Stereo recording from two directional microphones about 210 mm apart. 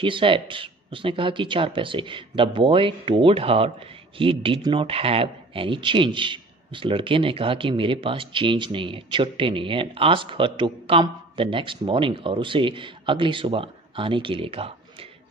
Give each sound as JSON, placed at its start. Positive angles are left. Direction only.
{"t": 0.0, "sound": "speech", "side_deg": -25}